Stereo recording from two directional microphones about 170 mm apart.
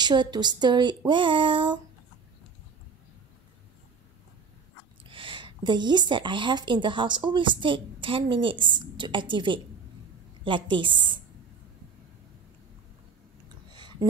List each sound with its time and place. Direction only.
0.0 s speech: 25° right (ahead or behind)
5.0 s speech: 30° right (ahead or behind)
13.7 s a sound: 25° right (ahead or behind)